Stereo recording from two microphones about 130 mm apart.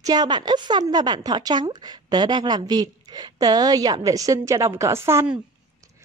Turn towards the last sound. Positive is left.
turn(degrees=-20)  # may be behind; listen again after turning